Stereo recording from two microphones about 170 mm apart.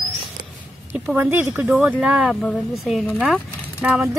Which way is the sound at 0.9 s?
10° right (ahead or behind).